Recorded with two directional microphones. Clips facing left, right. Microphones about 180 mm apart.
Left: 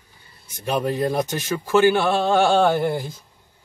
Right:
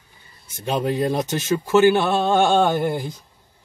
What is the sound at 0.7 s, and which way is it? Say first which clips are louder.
Speech: right 1 dB; 20° right (ahead or behind).